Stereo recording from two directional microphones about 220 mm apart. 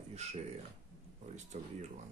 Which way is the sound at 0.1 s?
30° right (ahead or behind).